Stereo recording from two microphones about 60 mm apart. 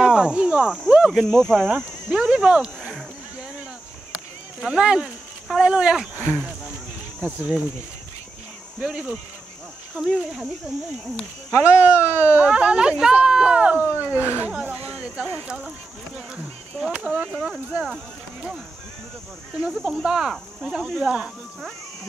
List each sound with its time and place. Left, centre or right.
0.0 s cricket: centre
1.2 s speech: centre
1.6 s speech: centre
4.6 s speech: centre
7.2 s speech: right
8.8 s speech: centre
11.5 s speech: left
12.1 s speech: right
14.5 s speech: centre
16.8 s speech: centre
17.8 s speech: centre
19.7 s speech: centre